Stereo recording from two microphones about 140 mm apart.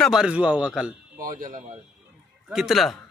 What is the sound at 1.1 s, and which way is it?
Speech, 80° right.